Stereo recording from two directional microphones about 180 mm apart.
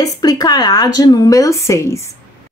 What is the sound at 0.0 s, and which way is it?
A woman's voice, 20° left (ahead or behind).